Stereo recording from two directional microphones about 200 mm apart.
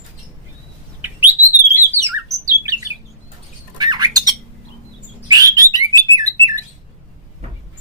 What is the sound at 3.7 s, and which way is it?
Squawk, 20° right (ahead or behind).